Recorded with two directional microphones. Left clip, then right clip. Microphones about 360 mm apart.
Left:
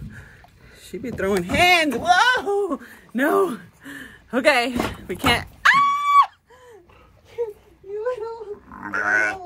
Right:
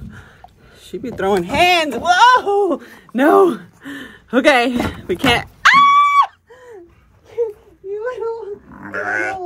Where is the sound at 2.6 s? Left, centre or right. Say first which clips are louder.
Right 8 dB; right.